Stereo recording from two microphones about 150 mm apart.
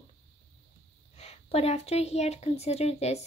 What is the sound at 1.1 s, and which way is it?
A woman's voice, 45° left (ahead or behind).